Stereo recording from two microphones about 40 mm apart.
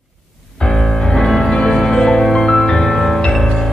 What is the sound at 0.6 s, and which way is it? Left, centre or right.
Music, centre.